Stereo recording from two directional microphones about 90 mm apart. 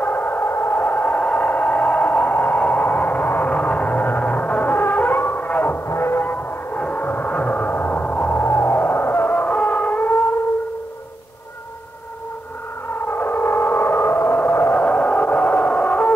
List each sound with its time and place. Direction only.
0.0 s a sound: 20° left (ahead or behind)
5.9 s music: 30° left (ahead or behind)
12.9 s civil defense siren: 25° left (ahead or behind)